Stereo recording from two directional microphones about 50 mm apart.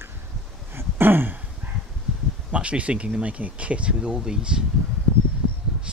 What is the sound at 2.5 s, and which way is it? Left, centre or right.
Speech, right.